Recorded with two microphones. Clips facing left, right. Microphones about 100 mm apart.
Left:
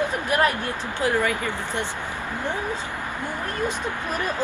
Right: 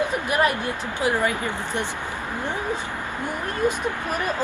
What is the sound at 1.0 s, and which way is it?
Speech, 20° right (ahead or behind).